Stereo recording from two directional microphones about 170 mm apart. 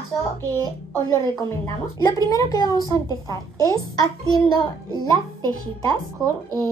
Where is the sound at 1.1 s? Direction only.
20° left (ahead or behind).